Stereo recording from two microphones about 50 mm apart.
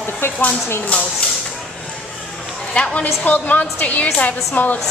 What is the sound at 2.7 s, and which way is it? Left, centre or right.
A woman's voice, left.